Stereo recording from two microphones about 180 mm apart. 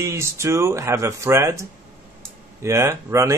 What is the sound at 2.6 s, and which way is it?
Speech, 15° right (ahead or behind).